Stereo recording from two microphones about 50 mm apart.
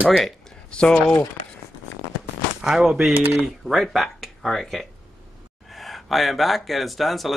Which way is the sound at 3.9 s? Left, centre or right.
Centre.